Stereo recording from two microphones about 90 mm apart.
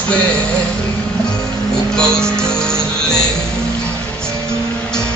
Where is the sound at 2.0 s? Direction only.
10° left (ahead or behind).